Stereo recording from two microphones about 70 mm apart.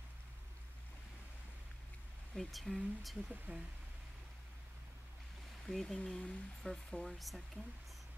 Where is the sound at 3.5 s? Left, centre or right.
Right.